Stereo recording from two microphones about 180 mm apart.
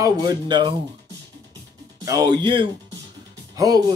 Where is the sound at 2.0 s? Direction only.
20° right (ahead or behind).